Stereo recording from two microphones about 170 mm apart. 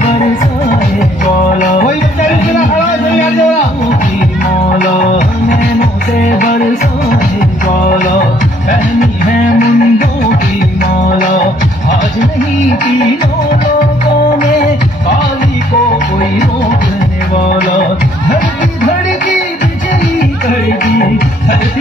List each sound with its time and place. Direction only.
0.9 s music: 45° left (ahead or behind)
4.7 s music: 45° left (ahead or behind)
9.2 s music: 50° left (ahead or behind)
11.1 s music: 50° left (ahead or behind)
20.8 s music: 60° left (ahead or behind)